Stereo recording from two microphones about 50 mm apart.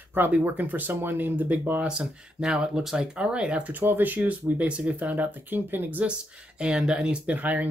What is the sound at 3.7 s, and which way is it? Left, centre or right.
Speech, right.